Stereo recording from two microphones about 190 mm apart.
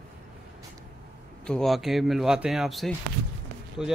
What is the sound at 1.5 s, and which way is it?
Speech, centre (ahead or behind).